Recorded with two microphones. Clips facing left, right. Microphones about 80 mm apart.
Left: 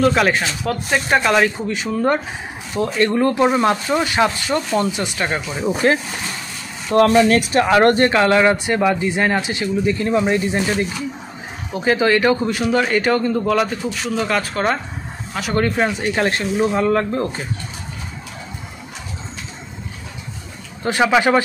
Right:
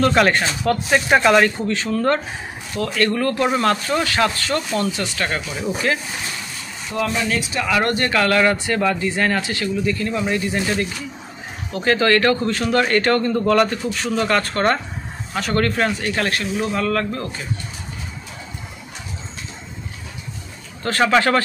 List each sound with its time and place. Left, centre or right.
0.0 s a man's voice: centre
6.9 s speech: left
7.6 s speech: left
8.1 s a man's voice: left
20.8 s a man's voice: centre